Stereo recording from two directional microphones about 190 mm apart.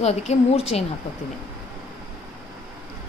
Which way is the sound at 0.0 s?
35° left (ahead or behind).